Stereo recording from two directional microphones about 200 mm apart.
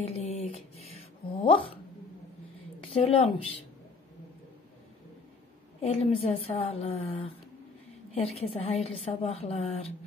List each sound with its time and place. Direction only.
0.1 s a sound: 30° left (ahead or behind)
2.8 s speech: 30° left (ahead or behind)
5.8 s a woman's voice: 30° left (ahead or behind)